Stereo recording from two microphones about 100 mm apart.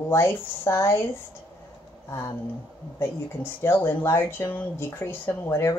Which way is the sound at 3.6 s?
25° left (ahead or behind).